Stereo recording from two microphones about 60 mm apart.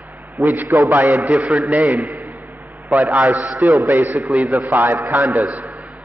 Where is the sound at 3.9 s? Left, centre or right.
Right.